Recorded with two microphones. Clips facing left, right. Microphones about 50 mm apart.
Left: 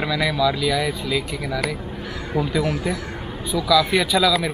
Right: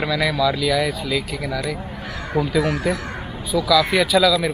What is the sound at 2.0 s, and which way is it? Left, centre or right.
Speech, right.